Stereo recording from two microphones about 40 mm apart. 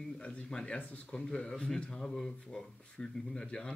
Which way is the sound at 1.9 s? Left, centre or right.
Centre.